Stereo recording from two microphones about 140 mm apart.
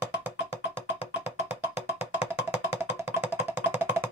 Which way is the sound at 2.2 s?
45° left (ahead or behind).